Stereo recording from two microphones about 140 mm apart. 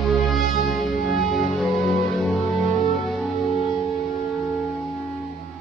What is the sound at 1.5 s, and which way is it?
Music, centre (ahead or behind).